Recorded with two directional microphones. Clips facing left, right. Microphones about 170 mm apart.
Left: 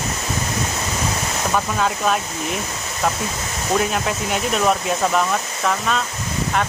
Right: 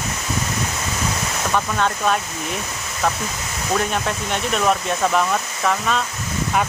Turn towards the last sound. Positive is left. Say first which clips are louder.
# even
turn(degrees=0)  # may be behind; listen again after turning